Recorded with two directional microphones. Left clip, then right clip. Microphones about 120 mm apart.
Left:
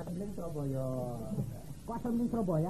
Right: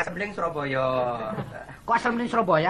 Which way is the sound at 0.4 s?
20° left (ahead or behind).